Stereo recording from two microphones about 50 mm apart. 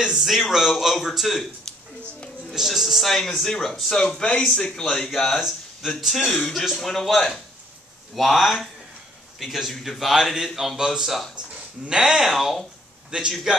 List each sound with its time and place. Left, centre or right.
0.0 s speech: centre
2.5 s speech: centre
5.9 s speech: centre
6.2 s speech: centre
11.3 s speech: centre
13.1 s a man's voice: centre